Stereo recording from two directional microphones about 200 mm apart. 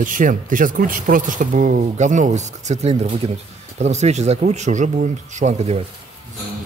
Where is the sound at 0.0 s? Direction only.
40° right (ahead or behind).